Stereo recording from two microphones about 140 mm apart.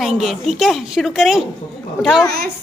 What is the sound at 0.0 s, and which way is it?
A woman's voice, centre (ahead or behind).